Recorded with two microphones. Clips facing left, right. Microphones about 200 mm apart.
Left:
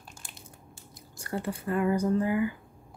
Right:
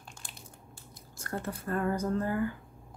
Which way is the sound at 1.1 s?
10° left (ahead or behind).